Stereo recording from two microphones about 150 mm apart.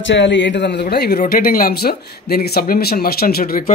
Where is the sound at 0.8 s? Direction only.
90° left.